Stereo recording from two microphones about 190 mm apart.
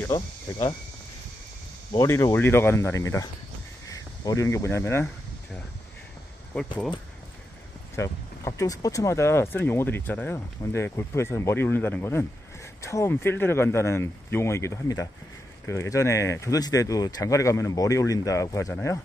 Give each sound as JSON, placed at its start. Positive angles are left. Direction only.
{"t": 0.5, "sound": "speech", "side_deg": 20}
{"t": 1.9, "sound": "speech", "side_deg": 15}
{"t": 6.5, "sound": "speech", "side_deg": 5}
{"t": 7.9, "sound": "speech", "side_deg": 15}